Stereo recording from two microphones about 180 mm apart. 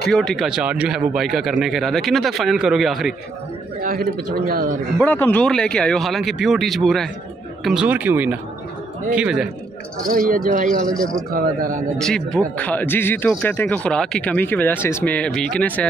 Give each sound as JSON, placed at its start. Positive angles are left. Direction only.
{"t": 0.1, "sound": "a man's voice", "side_deg": 5}
{"t": 3.8, "sound": "a man's voice", "side_deg": -50}
{"t": 5.0, "sound": "a man's voice", "side_deg": 10}
{"t": 10.0, "sound": "a man's voice", "side_deg": -50}
{"t": 12.0, "sound": "speech", "side_deg": 5}